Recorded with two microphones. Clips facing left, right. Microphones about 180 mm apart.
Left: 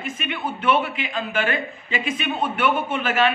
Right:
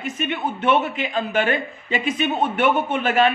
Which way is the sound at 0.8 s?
40° right (ahead or behind).